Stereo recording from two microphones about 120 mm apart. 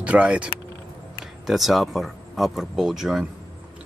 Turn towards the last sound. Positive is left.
turn(degrees=-5)  # may be behind; listen again after turning